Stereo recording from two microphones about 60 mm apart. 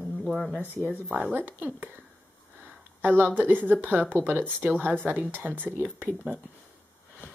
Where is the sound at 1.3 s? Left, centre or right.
Right.